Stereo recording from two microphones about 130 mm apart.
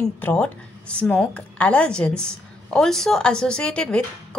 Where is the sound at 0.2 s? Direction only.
10° left (ahead or behind).